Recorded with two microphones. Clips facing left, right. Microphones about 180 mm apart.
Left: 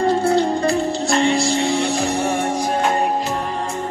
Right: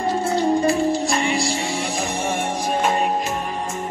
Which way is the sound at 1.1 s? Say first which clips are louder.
Left 4 dB; 15° right (ahead or behind).